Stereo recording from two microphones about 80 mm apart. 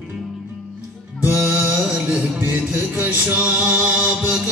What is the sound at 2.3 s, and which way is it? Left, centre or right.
Music, right.